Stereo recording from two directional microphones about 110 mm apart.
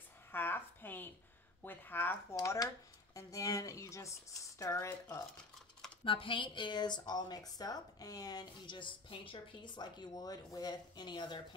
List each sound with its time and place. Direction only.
0.3 s a sound: 20° left (ahead or behind)
1.6 s speech: 20° left (ahead or behind)
2.3 s a woman's voice: 30° left (ahead or behind)
6.0 s a woman's voice: 50° left (ahead or behind)